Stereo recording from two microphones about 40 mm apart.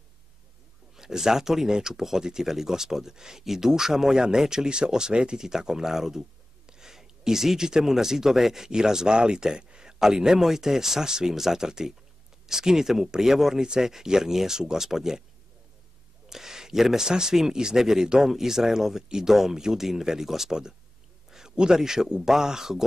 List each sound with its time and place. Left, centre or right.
0.9 s speech: centre
16.3 s speech: centre
21.3 s a sound: centre
21.5 s speech: centre